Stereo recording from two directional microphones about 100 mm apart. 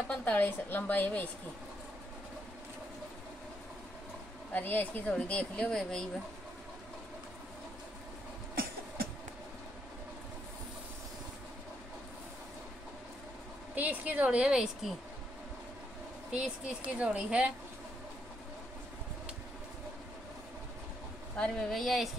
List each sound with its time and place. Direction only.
0.1 s speech: 15° left (ahead or behind)
4.6 s speech: 15° left (ahead or behind)
13.7 s a woman's voice: 15° right (ahead or behind)
16.3 s a woman's voice: 10° right (ahead or behind)
21.4 s speech: 5° left (ahead or behind)